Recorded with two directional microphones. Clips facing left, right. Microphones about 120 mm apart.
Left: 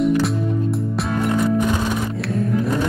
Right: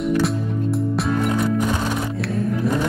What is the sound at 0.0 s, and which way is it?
Music, centre (ahead or behind).